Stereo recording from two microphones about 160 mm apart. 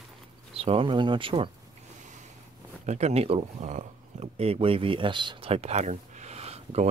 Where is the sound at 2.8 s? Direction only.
45° right (ahead or behind).